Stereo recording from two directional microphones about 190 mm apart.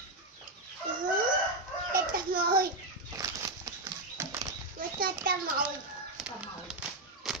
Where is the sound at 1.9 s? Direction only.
50° right (ahead or behind).